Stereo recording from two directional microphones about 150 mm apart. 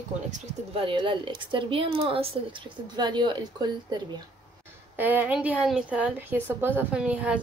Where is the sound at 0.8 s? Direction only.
35° right (ahead or behind).